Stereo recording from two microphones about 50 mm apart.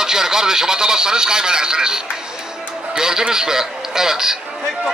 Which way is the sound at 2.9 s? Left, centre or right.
Centre.